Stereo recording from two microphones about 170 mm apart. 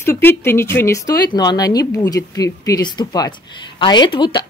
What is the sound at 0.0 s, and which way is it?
Speech, 15° left (ahead or behind).